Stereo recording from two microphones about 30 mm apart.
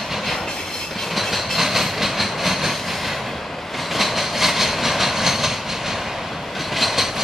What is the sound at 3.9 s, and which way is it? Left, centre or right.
Train, centre.